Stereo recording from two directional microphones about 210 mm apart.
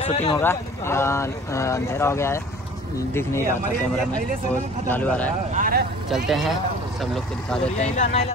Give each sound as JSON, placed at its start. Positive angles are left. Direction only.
{"t": 0.0, "sound": "a man's voice", "side_deg": 30}
{"t": 0.4, "sound": "speech", "side_deg": 10}
{"t": 4.8, "sound": "speech", "side_deg": 10}
{"t": 5.5, "sound": "speech", "side_deg": -40}
{"t": 6.0, "sound": "speech", "side_deg": 0}
{"t": 7.8, "sound": "speech", "side_deg": 35}